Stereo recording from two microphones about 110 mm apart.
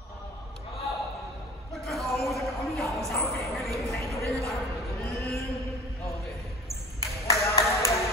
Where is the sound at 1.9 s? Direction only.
Centre (ahead or behind).